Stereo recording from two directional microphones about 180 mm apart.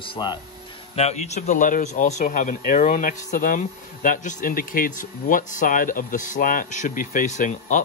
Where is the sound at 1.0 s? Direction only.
40° left (ahead or behind).